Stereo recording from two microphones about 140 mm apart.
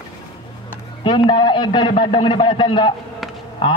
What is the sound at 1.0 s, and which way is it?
A man's voice, 35° left (ahead or behind).